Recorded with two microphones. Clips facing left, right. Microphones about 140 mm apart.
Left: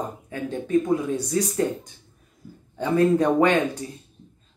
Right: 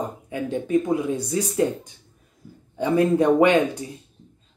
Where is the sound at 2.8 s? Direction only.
10° right (ahead or behind).